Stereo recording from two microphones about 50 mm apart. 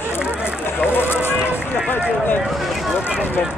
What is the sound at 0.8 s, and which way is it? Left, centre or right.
Run, left.